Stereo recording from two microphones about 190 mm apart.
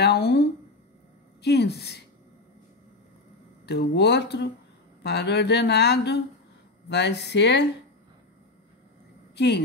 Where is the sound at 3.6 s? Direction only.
60° left (ahead or behind).